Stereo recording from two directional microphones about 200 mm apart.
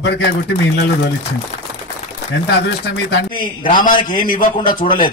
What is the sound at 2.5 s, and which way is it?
Speech, 55° left (ahead or behind).